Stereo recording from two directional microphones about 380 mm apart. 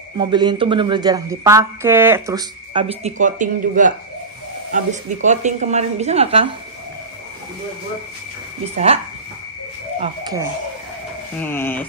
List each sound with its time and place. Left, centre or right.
0.2 s speech: centre
8.7 s speech: centre
11.3 s speech: centre